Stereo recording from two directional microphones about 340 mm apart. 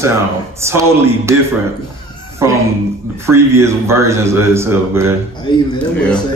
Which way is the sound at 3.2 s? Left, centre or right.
Centre.